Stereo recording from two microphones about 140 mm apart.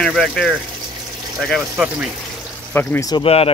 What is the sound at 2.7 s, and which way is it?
Speech, 15° left (ahead or behind).